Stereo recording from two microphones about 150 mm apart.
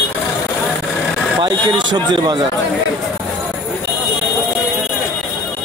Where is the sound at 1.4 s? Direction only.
30° right (ahead or behind).